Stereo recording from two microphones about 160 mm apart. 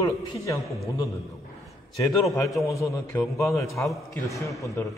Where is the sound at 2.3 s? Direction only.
20° left (ahead or behind).